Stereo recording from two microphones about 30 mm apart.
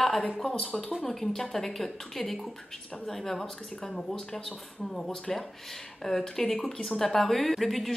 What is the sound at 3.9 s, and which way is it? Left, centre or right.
Speech, left.